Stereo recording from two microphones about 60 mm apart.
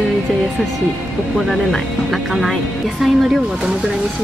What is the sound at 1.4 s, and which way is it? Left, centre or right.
Speech, centre.